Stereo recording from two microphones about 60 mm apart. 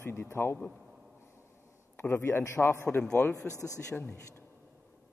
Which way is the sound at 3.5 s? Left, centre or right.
Right.